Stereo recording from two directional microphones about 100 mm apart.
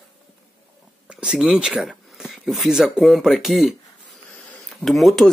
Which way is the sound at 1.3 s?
5° right (ahead or behind).